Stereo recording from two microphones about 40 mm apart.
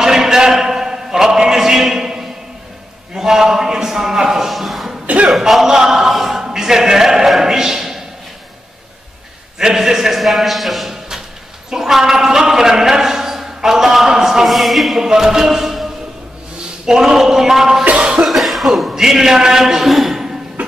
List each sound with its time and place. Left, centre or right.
0.0 s a sound: centre
3.2 s a man's voice: centre
5.0 s a sound: right
5.3 s speech: centre
6.5 s a sound: centre
9.6 s a man's voice: centre
14.5 s speech: centre
15.0 s music: centre
16.8 s a man's voice: centre
17.8 s cough: right
18.2 s cough: centre